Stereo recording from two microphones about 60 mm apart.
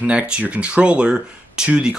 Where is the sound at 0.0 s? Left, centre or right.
Centre.